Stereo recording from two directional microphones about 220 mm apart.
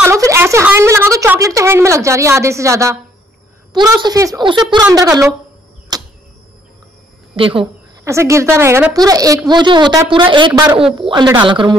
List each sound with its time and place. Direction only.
0.0 s a woman's voice: 15° right (ahead or behind)
5.9 s arrow: 20° right (ahead or behind)
7.3 s speech: 25° right (ahead or behind)
8.0 s a woman's voice: 15° right (ahead or behind)